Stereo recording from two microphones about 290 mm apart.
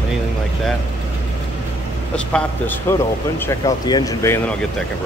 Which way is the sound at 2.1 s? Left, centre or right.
Centre.